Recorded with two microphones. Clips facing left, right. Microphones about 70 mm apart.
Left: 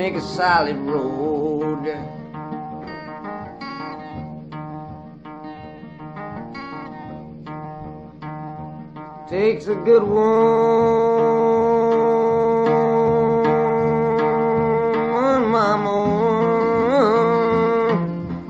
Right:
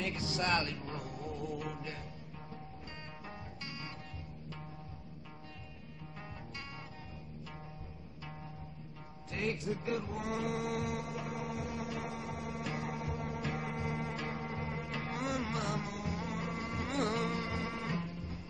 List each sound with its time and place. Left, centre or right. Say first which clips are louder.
0.0 s music: left 16 dB; left
9.3 s music: left 18 dB; left